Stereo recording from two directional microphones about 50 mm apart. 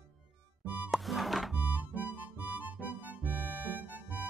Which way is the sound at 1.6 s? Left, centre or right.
Right.